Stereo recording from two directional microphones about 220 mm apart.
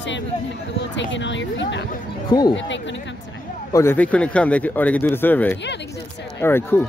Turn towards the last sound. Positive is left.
turn(degrees=10)  # may be behind; listen again after turning